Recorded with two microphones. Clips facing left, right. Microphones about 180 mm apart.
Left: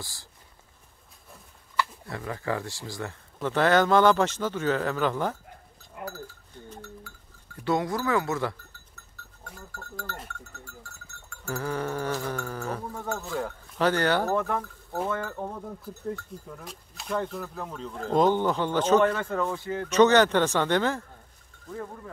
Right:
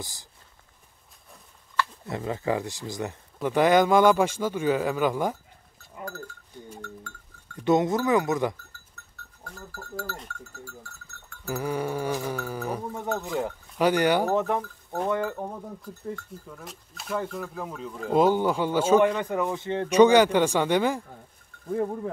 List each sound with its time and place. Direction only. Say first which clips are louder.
0.0 s speech: right 3 dB; 20° right (ahead or behind)
2.0 s speech: right 4 dB; 20° right (ahead or behind)
6.8 s speech: right 2 dB; 5° left (ahead or behind)
7.6 s speech: right 5 dB; 20° right (ahead or behind)
9.4 s speech: right 2 dB; 5° right (ahead or behind)
10.6 s cowbell: right 3 dB; centre (ahead or behind)
11.4 s speech: right 2 dB; 10° right (ahead or behind)
15.2 s speech: right 2 dB; 5° right (ahead or behind); by 19.9 s 25° right (ahead or behind)
19.9 s speech: right 2 dB; 10° right (ahead or behind)